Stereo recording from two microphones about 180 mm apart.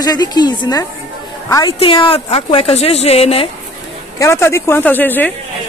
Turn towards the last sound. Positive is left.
turn(degrees=10)  # may be behind; listen again after turning